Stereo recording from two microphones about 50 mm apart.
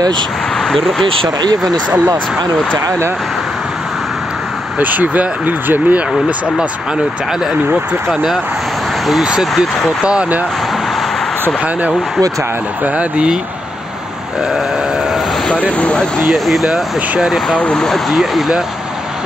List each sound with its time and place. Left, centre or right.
0.7 s speech: centre
4.7 s speech: right
8.1 s speech: centre
10.0 s speech: right
15.8 s speech: left
16.3 s speech: centre
17.7 s speech: centre
18.1 s speech: centre